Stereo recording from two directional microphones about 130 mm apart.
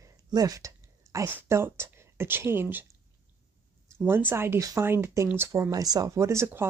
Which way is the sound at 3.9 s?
20° right (ahead or behind).